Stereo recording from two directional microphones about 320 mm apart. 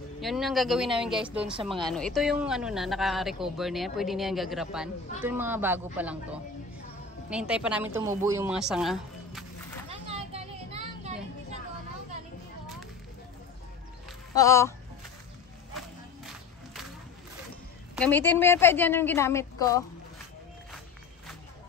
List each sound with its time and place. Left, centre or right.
0.2 s speech: centre
7.2 s speech: centre
9.8 s children playing: centre
14.3 s speech: centre
17.9 s a woman's voice: centre